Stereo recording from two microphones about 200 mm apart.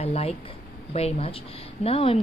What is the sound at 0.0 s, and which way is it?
Speech, 30° left (ahead or behind).